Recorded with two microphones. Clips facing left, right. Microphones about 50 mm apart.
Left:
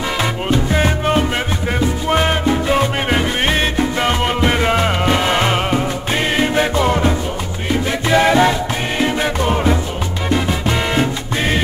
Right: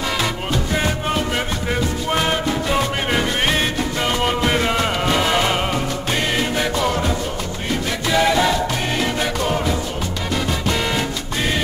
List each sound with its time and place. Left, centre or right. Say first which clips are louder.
0.2 s music: left 4 dB; centre